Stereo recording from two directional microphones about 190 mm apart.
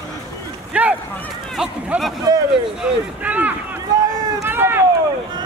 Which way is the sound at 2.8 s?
10° right (ahead or behind).